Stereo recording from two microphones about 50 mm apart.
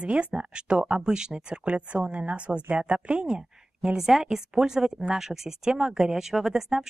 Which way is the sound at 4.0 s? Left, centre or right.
Centre.